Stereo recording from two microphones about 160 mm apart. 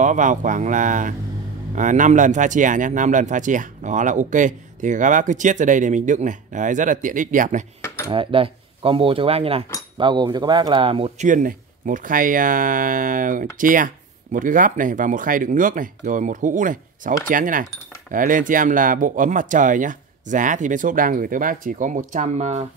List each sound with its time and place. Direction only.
0.0 s speech: 50° right (ahead or behind)
8.1 s speech: 35° right (ahead or behind)